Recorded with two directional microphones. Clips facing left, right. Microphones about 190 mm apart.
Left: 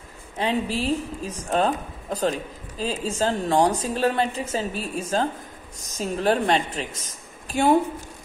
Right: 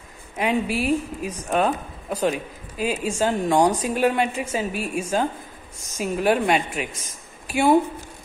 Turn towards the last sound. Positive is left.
turn(degrees=-10)  # may be behind; listen again after turning